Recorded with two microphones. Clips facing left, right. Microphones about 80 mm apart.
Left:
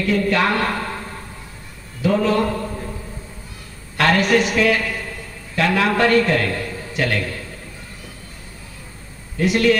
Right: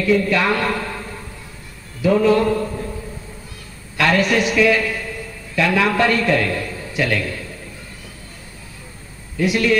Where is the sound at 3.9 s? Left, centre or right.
Left.